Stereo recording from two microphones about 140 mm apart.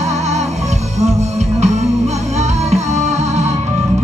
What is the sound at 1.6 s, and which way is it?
Music, 55° right (ahead or behind).